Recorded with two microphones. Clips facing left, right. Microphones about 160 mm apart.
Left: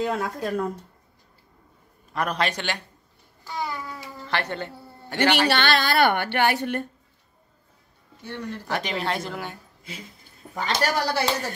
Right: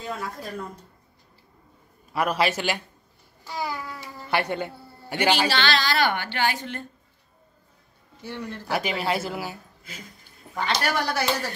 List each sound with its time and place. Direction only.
0.0 s speech: 70° left (ahead or behind)
2.1 s a woman's voice: 5° right (ahead or behind)
3.4 s babbling: 5° right (ahead or behind)
4.3 s a woman's voice: 10° right (ahead or behind)
5.3 s a woman's voice: 60° left (ahead or behind)
8.2 s a woman's voice: 10° right (ahead or behind)
10.5 s a man's voice: 40° left (ahead or behind)